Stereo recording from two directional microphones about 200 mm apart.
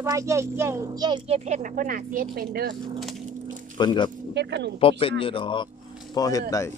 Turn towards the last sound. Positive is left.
turn(degrees=15)  # may be behind; listen again after turning